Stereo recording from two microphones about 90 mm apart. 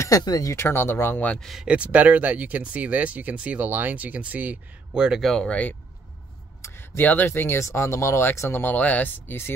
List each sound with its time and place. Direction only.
0.0 s speech: 45° left (ahead or behind)
0.6 s speech: 30° left (ahead or behind)
1.4 s speech: centre (ahead or behind)
1.7 s speech: 15° right (ahead or behind)
5.3 s speech: 10° left (ahead or behind)
6.6 s speech: 30° left (ahead or behind)